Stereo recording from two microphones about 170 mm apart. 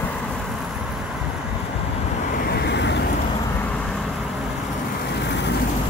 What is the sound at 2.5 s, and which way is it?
Vehicle, 85° left.